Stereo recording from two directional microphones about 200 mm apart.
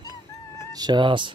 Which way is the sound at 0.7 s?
20° right (ahead or behind).